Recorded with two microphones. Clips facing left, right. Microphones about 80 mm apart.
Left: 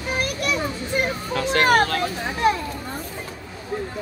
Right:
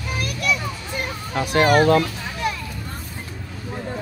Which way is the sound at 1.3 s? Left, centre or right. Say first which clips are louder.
Right 3 dB; centre.